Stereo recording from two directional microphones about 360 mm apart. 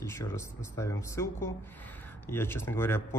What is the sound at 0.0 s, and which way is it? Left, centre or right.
A man's voice, centre.